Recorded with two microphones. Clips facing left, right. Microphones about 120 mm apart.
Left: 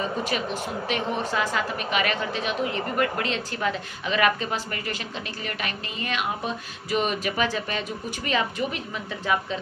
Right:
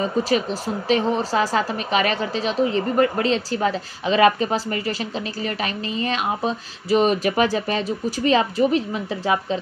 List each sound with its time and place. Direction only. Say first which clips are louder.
0.2 s a woman's voice: right 6 dB; 35° right (ahead or behind)